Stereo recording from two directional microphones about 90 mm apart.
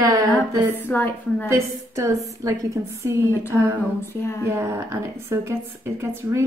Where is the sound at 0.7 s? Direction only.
25° left (ahead or behind).